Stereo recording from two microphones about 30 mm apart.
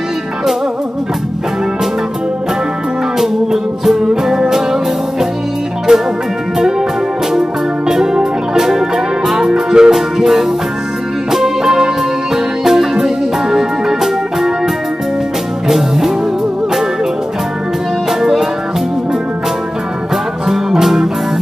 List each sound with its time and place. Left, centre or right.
3.8 s music: centre
5.9 s music: right
7.9 s music: right
20.4 s music: centre